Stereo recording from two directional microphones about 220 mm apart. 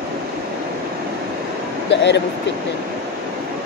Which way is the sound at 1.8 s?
50° left (ahead or behind).